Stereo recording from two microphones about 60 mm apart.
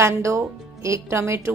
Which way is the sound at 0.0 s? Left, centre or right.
Right.